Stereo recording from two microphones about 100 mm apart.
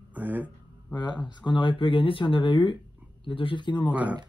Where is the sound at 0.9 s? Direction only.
45° left (ahead or behind).